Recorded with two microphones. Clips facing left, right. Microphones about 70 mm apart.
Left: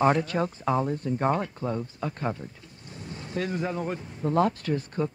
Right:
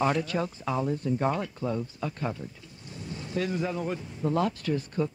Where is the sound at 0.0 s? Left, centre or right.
Left.